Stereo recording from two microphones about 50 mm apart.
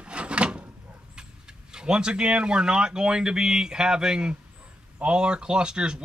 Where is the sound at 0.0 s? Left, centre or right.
Right.